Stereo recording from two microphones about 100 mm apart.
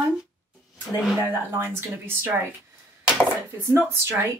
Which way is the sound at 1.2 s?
20° right (ahead or behind).